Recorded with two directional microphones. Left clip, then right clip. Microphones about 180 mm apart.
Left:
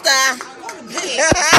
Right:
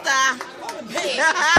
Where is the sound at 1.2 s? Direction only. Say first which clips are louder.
Left 4 dB; 20° left (ahead or behind).